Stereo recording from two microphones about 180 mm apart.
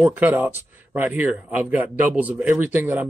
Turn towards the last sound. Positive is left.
turn(degrees=-10)  # may be behind; listen again after turning